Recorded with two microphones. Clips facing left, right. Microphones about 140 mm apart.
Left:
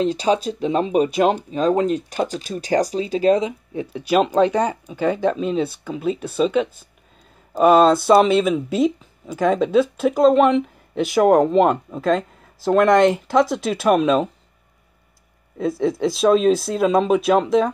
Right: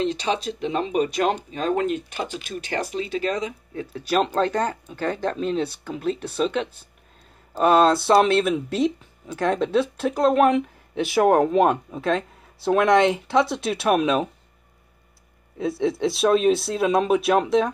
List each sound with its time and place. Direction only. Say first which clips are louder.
0.0 s speech: left 5 dB; 35° left (ahead or behind)
1.0 s speech: left 5 dB; 5° left (ahead or behind)
1.5 s speech: left 5 dB; 35° left (ahead or behind)
3.9 s speech: left 4 dB; 10° left (ahead or behind)
15.5 s speech: left 3 dB; centre (ahead or behind)